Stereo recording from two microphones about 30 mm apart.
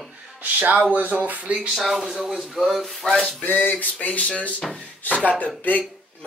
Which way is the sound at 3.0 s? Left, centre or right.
Centre.